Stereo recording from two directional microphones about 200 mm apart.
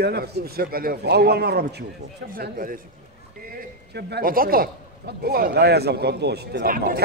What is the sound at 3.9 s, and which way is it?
A man's voice, 50° right (ahead or behind).